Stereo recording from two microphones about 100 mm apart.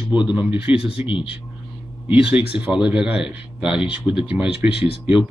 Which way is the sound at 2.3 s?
10° right (ahead or behind).